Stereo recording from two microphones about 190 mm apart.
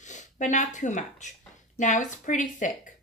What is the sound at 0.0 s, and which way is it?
A woman's voice, 40° left (ahead or behind).